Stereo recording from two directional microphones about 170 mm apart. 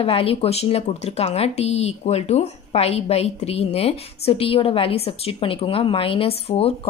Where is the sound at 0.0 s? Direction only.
35° left (ahead or behind).